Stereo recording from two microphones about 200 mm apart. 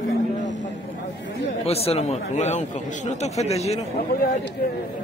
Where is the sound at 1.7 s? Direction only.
30° left (ahead or behind).